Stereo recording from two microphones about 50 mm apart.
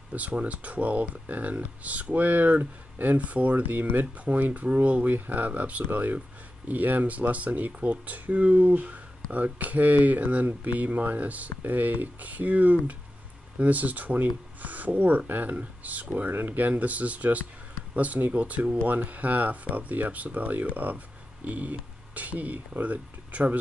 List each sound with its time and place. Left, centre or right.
0.1 s speech: right
16.3 s speech: right